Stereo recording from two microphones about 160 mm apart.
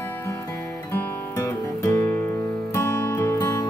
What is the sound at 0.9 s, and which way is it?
Music, 20° left (ahead or behind).